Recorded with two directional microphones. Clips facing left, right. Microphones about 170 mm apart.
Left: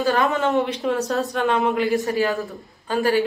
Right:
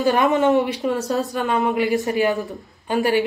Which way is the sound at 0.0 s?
20° right (ahead or behind).